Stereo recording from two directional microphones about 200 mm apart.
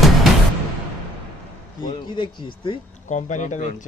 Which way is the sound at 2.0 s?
25° left (ahead or behind).